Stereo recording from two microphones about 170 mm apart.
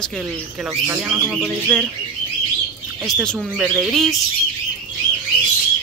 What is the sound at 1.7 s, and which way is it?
Speech, 5° left (ahead or behind).